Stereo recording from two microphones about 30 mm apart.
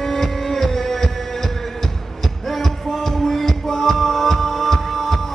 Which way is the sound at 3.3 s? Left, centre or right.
Centre.